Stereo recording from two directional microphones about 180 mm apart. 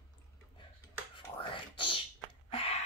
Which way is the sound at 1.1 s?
30° left (ahead or behind).